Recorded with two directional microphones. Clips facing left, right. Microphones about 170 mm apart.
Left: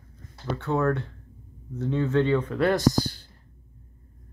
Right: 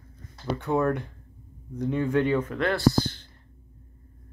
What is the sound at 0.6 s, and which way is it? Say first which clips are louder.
Speech: even; 15° right (ahead or behind).